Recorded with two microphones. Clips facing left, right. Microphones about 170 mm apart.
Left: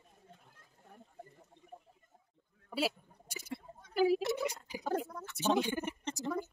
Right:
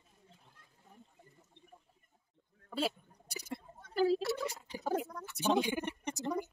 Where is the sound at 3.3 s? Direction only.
45° right (ahead or behind).